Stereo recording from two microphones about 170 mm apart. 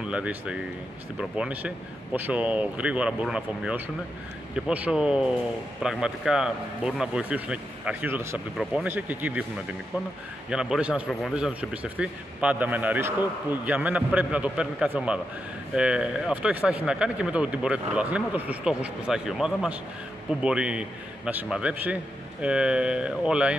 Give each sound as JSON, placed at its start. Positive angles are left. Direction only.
{"t": 0.1, "sound": "a man's voice", "side_deg": -5}
{"t": 10.5, "sound": "a man's voice", "side_deg": -5}